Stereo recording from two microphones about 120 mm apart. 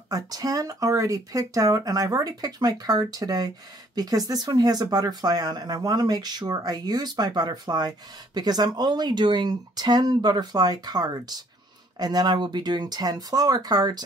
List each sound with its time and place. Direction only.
0.1 s speech: 30° right (ahead or behind)